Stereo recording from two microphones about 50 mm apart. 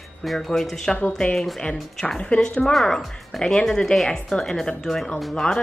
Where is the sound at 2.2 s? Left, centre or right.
Centre.